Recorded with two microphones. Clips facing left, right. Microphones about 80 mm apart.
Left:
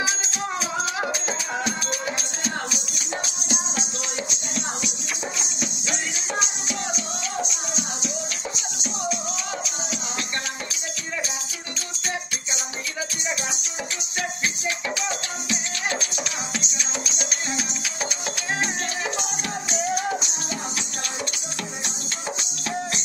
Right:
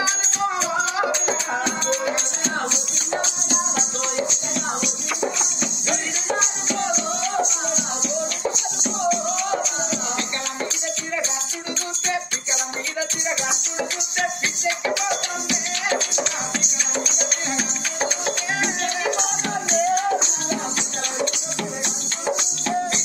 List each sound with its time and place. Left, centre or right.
0.0 s music: right
8.8 s music: right
14.9 s music: right
17.6 s music: right
21.8 s music: right